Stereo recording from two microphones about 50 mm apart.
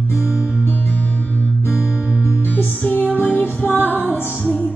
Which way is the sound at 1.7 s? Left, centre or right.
Centre.